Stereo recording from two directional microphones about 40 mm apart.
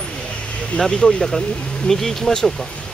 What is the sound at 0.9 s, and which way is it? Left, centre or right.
Speech, centre.